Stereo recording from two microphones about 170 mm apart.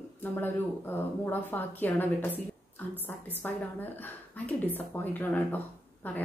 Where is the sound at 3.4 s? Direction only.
10° left (ahead or behind).